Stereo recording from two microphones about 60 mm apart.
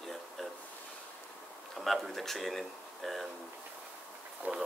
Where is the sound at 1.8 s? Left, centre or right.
Centre.